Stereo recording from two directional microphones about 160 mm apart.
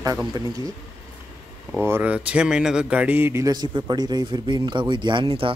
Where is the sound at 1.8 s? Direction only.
10° right (ahead or behind).